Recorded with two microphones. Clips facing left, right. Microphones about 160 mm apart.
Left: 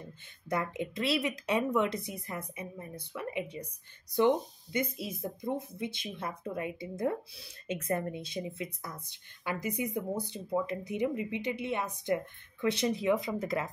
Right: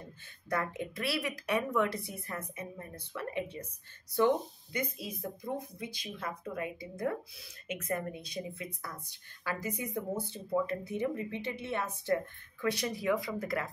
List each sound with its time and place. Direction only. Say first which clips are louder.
0.5 s speech: left 1 dB; 20° left (ahead or behind)
4.7 s speech: left 3 dB; 25° left (ahead or behind)